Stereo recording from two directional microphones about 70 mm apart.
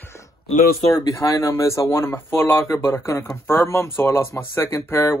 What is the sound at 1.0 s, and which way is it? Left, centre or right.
Speech, left.